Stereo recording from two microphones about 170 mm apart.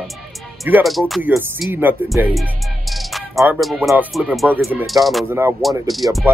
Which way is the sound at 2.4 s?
Centre (ahead or behind).